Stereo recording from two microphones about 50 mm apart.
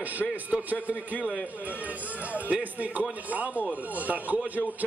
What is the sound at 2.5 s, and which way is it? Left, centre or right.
A man's voice, right.